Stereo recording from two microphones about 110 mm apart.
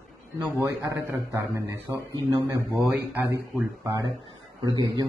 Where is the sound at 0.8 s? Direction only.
25° right (ahead or behind).